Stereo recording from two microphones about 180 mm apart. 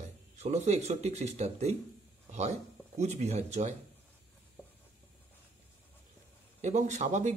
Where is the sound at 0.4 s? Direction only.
40° right (ahead or behind).